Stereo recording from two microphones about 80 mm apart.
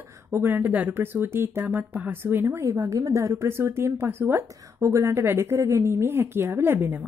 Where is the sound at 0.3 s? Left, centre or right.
Right.